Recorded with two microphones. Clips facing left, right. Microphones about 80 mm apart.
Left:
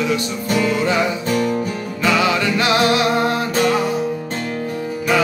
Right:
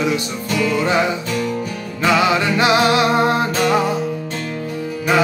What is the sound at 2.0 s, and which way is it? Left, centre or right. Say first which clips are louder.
Music: right 2 dB; right.